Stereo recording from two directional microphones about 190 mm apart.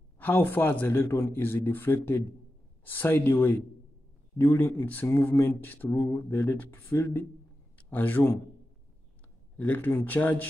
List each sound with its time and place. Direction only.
0.2 s a man's voice: 10° left (ahead or behind)
9.6 s speech: 10° left (ahead or behind)